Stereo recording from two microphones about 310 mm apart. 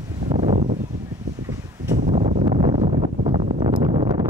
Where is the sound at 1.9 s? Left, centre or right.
Centre.